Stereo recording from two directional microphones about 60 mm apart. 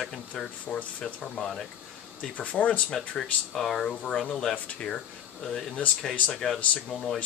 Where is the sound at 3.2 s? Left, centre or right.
Centre.